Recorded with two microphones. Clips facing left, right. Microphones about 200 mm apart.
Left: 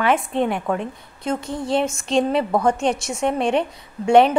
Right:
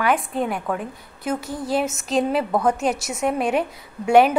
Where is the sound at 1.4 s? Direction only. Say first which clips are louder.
Left 2 dB; 25° left (ahead or behind).